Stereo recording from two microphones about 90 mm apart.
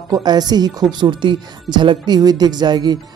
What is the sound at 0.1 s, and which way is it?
Speech, 50° right (ahead or behind).